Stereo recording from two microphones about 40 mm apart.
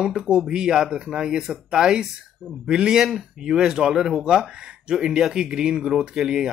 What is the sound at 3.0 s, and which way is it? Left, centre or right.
Speech, centre.